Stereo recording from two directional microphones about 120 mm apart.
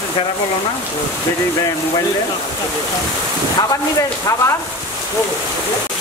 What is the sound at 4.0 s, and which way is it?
Speech, 25° left (ahead or behind).